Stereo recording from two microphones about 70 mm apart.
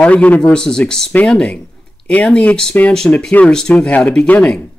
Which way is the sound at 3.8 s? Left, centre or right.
Left.